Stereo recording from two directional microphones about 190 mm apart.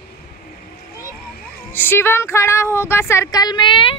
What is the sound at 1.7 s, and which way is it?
A woman's voice, 10° left (ahead or behind).